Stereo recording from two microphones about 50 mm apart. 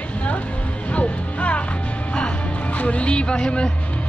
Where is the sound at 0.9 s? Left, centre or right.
Left.